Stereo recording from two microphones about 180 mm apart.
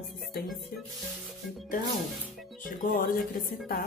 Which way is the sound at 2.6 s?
50° left (ahead or behind).